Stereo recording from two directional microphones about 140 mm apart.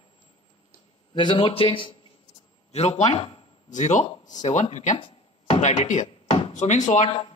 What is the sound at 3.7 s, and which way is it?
Speech, 60° left (ahead or behind).